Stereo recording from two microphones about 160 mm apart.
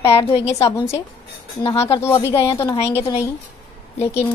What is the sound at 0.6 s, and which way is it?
A woman's voice, 20° left (ahead or behind).